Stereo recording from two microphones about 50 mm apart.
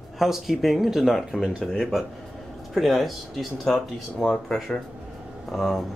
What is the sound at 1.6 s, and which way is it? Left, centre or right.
Speech, centre.